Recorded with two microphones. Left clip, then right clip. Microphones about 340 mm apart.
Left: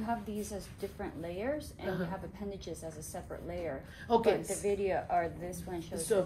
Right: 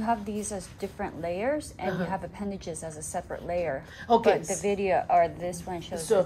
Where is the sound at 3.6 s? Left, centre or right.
Right.